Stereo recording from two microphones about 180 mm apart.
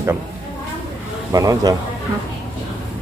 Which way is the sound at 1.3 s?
20° right (ahead or behind).